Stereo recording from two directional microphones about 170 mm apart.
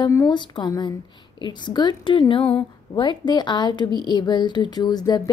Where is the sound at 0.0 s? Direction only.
20° left (ahead or behind).